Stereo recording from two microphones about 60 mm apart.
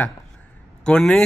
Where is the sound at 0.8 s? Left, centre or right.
Centre.